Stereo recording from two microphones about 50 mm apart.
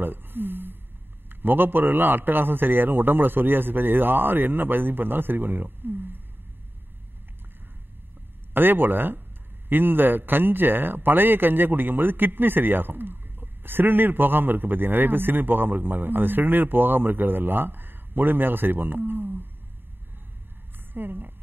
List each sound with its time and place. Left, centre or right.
0.0 s a sound: right
1.3 s speech: right
8.5 s speech: right
20.9 s speech: right